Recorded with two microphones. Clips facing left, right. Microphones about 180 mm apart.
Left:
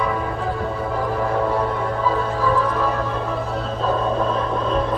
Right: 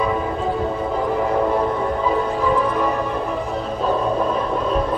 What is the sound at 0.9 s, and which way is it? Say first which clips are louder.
Music: right 2 dB; 20° right (ahead or behind).